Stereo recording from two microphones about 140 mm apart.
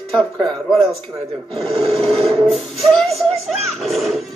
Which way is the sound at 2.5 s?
Centre (ahead or behind).